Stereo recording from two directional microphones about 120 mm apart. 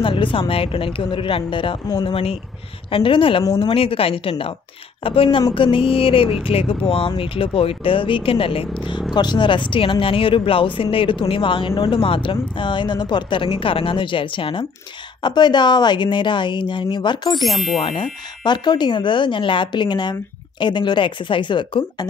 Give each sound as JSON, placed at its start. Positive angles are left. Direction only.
{"t": 0.0, "sound": "speech", "side_deg": 45}
{"t": 17.4, "sound": "speech", "side_deg": 0}
{"t": 17.8, "sound": "speech", "side_deg": 40}